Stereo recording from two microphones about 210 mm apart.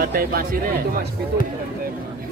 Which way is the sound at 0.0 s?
45° right (ahead or behind).